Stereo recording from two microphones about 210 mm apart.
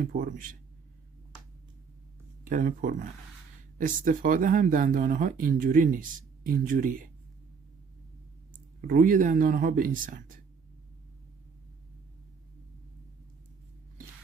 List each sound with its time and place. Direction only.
0.0 s speech: 40° right (ahead or behind)
2.4 s speech: 40° right (ahead or behind)
8.8 s speech: 40° right (ahead or behind)